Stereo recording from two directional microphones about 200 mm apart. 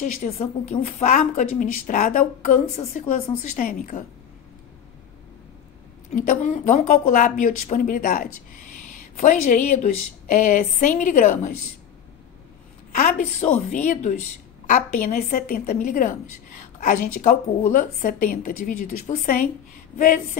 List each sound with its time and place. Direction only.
0.0 s a woman's voice: 35° left (ahead or behind)
6.1 s a woman's voice: 40° left (ahead or behind)
12.9 s a woman's voice: 40° left (ahead or behind)